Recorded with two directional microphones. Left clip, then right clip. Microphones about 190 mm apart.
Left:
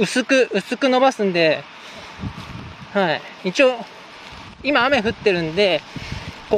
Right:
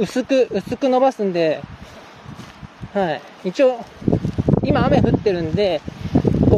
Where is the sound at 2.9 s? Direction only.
10° right (ahead or behind).